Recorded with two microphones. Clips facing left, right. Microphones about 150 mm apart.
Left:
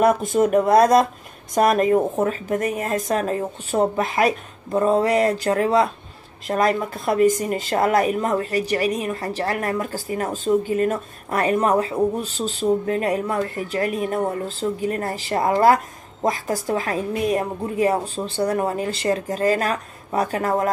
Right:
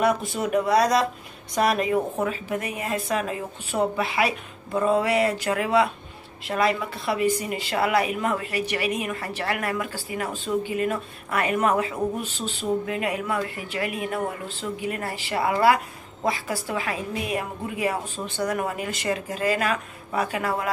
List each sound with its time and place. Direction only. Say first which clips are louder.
0.0 s speech: left 6 dB; 45° left (ahead or behind)